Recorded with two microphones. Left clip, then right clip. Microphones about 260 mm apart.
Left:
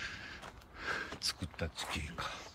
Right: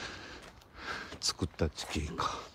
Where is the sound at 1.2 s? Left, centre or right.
Right.